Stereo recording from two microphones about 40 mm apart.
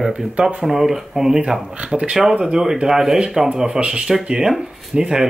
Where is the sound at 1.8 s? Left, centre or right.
Right.